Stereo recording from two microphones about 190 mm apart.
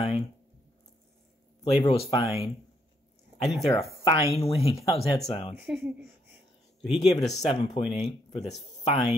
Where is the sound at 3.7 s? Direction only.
30° left (ahead or behind).